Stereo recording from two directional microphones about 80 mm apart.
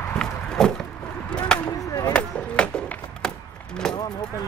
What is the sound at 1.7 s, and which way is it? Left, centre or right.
Chop, left.